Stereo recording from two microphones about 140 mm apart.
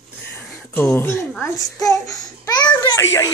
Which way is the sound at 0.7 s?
15° left (ahead or behind).